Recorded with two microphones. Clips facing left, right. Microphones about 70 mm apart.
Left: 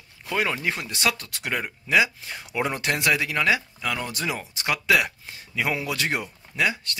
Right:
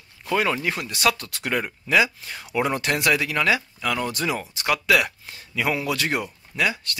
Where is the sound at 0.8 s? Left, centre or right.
Left.